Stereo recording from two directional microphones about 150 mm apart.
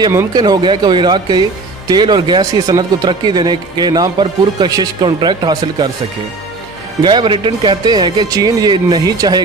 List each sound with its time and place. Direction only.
0.0 s speech: 20° right (ahead or behind)
7.0 s speech: 30° right (ahead or behind)